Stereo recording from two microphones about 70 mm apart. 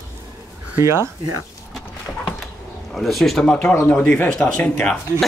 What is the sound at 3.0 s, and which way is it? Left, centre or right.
Speech, centre.